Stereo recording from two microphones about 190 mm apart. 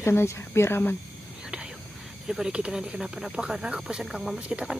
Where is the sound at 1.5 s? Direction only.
5° right (ahead or behind).